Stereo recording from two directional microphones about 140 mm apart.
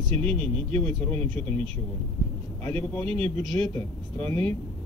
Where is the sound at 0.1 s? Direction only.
45° right (ahead or behind).